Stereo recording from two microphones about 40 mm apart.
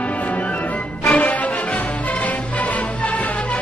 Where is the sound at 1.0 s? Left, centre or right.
Left.